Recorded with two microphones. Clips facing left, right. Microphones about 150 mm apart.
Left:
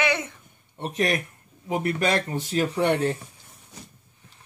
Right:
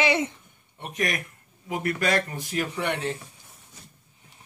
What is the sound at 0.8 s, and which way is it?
Speech, 30° left (ahead or behind).